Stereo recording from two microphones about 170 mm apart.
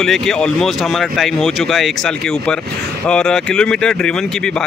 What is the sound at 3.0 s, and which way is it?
Speech, 5° left (ahead or behind).